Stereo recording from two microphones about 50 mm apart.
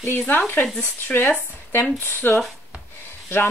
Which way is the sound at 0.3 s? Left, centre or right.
Left.